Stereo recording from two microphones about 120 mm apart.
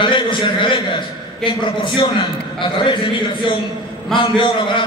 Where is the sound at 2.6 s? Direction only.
40° left (ahead or behind).